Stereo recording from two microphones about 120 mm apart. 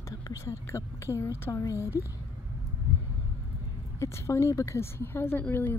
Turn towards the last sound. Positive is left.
turn(degrees=15)  # may be behind; listen again after turning